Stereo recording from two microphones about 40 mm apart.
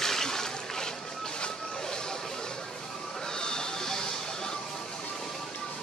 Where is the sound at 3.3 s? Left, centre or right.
Centre.